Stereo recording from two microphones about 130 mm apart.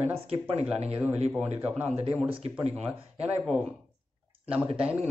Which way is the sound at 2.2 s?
45° right (ahead or behind).